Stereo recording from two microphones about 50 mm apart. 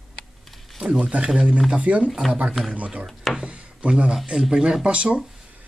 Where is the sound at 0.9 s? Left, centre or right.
Right.